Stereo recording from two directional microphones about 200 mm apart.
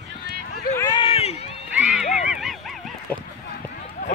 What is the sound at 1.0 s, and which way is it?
Run, 30° left (ahead or behind).